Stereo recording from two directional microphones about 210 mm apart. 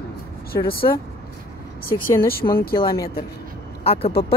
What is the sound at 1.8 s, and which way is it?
Speech, 45° left (ahead or behind).